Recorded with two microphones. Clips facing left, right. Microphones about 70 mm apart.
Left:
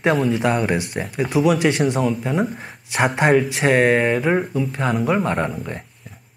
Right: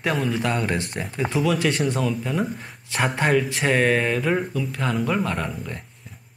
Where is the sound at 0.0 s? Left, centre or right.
Left.